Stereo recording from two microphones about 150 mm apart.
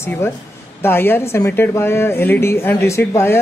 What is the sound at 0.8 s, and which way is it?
A woman's voice, 15° left (ahead or behind).